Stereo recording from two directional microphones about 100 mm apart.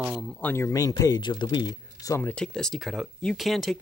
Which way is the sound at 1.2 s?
50° left (ahead or behind).